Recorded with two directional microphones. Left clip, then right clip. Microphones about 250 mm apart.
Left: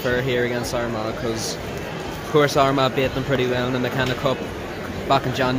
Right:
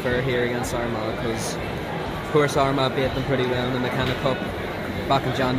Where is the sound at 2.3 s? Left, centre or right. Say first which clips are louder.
Left 3 dB; centre.